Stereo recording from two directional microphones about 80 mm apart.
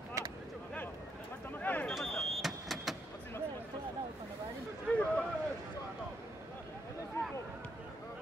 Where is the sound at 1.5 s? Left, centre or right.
Left.